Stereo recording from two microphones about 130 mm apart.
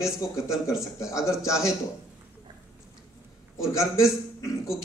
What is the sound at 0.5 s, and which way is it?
Speech, 5° right (ahead or behind).